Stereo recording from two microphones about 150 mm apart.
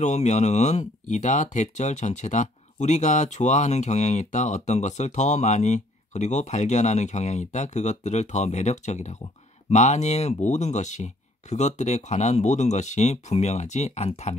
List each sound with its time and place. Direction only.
0.0 s speech: 50° left (ahead or behind)